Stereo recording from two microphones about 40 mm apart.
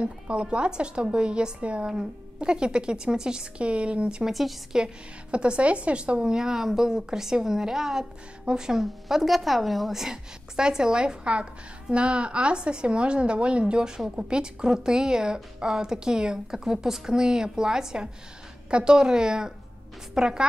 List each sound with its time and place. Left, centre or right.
0.0 s a woman's voice: right
1.9 s a woman's voice: centre
4.3 s a woman's voice: centre
5.3 s a woman's voice: right
6.2 s a woman's voice: centre
8.7 s a woman's voice: centre
10.0 s a woman's voice: centre